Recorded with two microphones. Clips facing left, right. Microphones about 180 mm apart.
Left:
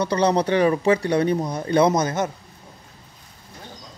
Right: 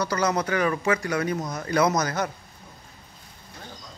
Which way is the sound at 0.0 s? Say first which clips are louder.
Left 5 dB; 30° left (ahead or behind).